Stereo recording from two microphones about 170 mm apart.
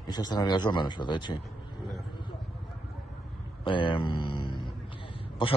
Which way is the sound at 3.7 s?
30° left (ahead or behind).